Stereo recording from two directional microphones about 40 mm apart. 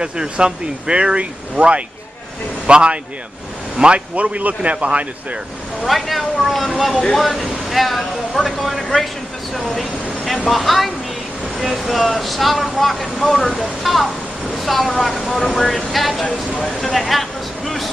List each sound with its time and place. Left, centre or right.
0.0 s speech: right
4.1 s speech: right
5.9 s a sound: centre
7.1 s speech: centre